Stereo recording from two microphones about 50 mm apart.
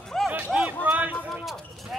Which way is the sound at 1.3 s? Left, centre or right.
Centre.